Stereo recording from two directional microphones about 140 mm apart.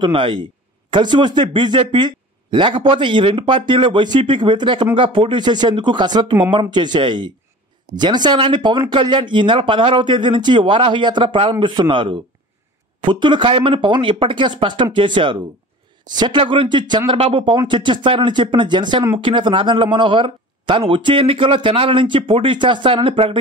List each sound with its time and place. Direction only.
0.0 s speech: 35° right (ahead or behind)